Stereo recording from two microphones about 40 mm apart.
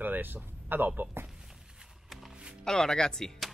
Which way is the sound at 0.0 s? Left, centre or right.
Right.